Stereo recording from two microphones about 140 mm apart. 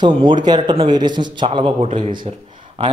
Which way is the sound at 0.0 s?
35° right (ahead or behind).